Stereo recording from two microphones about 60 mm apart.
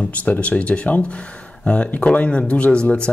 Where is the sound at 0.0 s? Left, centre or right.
Left.